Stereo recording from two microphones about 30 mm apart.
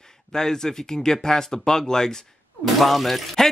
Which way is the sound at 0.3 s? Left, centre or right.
Centre.